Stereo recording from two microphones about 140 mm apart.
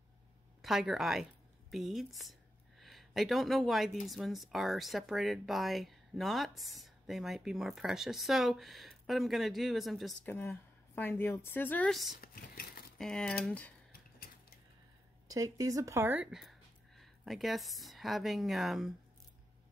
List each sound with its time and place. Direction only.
0.6 s speech: centre (ahead or behind)
10.2 s speech: 15° left (ahead or behind)
11.9 s speech: centre (ahead or behind)
12.2 s a sound: 90° left
12.9 s speech: 5° left (ahead or behind)
15.2 s speech: 25° right (ahead or behind); by 18.9 s centre (ahead or behind)